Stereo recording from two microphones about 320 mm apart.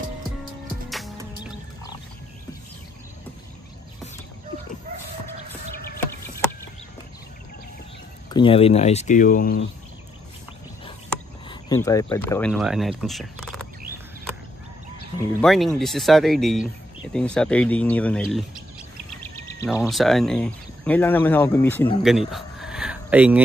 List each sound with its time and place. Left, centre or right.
0.8 s music: centre
8.3 s speech: centre
11.4 s speech: centre
13.0 s a sound: centre
15.1 s speech: centre
19.6 s speech: centre